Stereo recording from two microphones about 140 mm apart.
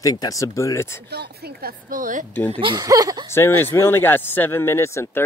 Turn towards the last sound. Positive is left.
turn(degrees=20)  # may be behind; listen again after turning